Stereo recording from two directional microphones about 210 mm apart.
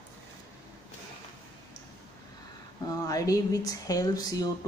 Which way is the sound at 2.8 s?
15° left (ahead or behind).